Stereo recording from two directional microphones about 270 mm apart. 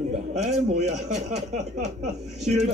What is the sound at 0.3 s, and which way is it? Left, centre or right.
A man's voice, right.